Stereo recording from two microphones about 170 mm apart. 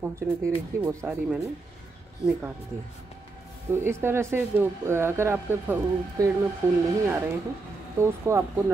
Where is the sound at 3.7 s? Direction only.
15° right (ahead or behind).